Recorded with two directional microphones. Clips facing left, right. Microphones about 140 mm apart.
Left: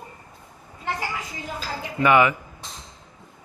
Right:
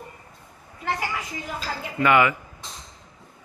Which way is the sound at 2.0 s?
20° left (ahead or behind).